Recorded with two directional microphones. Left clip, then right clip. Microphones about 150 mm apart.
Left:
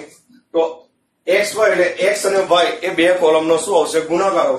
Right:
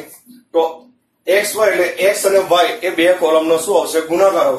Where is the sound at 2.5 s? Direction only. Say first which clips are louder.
Right 1 dB; 20° left (ahead or behind).